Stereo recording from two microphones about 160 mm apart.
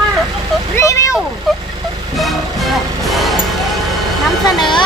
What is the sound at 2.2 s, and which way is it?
Music, centre (ahead or behind).